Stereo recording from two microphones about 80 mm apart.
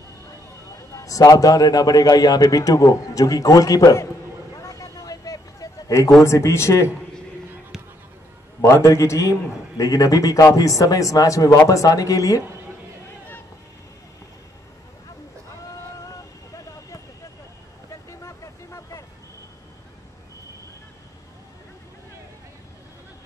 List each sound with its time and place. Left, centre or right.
0.9 s a man's voice: left
4.6 s a sound: left
6.2 s speech: left
8.6 s a man's voice: left
16.1 s vehicle: left
18.2 s vehicle: left